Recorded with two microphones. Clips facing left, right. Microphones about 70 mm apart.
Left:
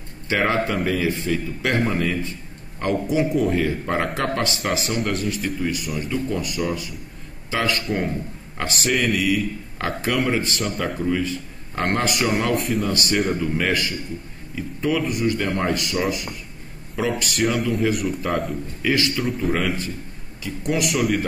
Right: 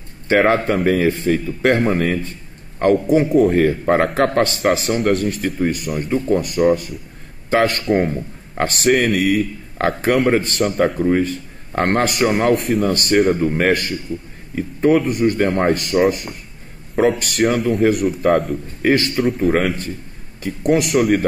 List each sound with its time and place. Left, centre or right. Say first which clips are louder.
0.3 s speech: right 6 dB; right
18.5 s speech: right 6 dB; right
19.3 s speech: right 6 dB; right
20.9 s a man's voice: right 6 dB; right